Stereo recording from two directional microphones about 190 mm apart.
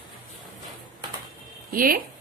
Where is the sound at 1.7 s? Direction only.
50° right (ahead or behind).